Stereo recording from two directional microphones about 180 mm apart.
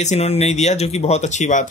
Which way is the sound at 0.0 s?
35° left (ahead or behind).